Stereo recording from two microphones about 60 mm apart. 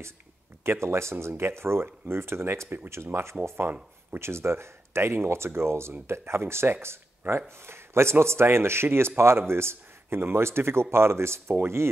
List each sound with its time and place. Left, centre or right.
0.7 s speech: right